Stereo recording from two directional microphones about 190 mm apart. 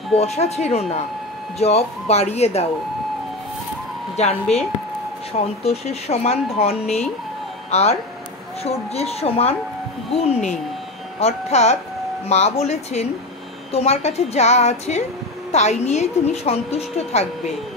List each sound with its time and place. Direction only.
0.1 s a woman's voice: 35° left (ahead or behind)
5.6 s a woman's voice: 35° left (ahead or behind)